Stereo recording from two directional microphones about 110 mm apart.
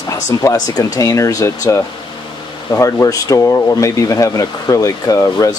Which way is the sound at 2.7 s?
30° left (ahead or behind).